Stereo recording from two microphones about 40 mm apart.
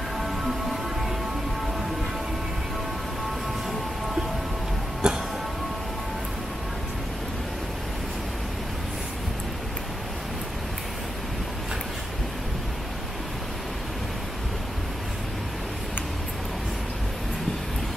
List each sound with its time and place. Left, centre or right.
5.0 s music: centre